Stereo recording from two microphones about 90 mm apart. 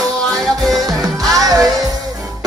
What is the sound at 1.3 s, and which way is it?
Music, 40° right (ahead or behind).